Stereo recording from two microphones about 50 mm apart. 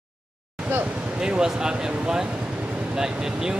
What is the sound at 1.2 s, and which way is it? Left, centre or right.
Speech, centre.